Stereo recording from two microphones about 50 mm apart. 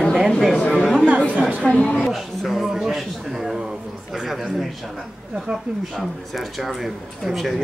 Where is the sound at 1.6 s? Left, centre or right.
Left.